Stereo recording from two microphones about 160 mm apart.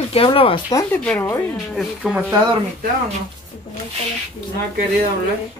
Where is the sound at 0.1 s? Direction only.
35° left (ahead or behind).